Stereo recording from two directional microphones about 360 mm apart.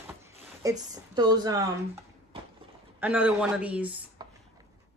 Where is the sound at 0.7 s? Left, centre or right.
Centre.